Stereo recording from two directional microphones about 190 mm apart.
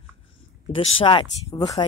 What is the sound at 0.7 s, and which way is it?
Speech, 30° left (ahead or behind).